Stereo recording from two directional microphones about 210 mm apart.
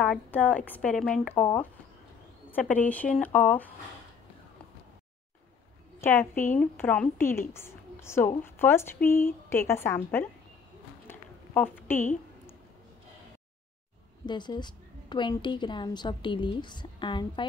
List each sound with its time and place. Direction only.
0.0 s a woman's voice: 5° left (ahead or behind)
5.9 s a woman's voice: 10° left (ahead or behind)
11.1 s a sound: 10° left (ahead or behind)
14.2 s a woman's voice: 20° left (ahead or behind)